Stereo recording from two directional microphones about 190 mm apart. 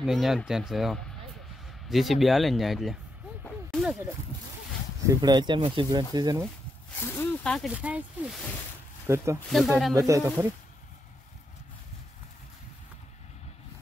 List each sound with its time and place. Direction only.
0.0 s speech: centre (ahead or behind)
3.4 s a sound: centre (ahead or behind)
5.0 s speech: 20° right (ahead or behind)
7.0 s speech: 5° left (ahead or behind); by 10.5 s 15° right (ahead or behind)